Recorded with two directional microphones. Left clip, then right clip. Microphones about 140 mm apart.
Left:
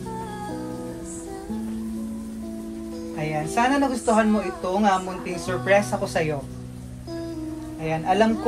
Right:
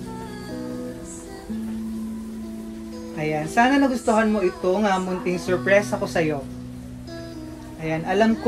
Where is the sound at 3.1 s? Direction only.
60° left (ahead or behind).